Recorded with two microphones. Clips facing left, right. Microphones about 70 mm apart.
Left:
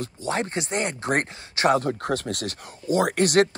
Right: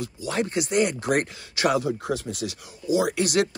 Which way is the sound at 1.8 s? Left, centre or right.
Left.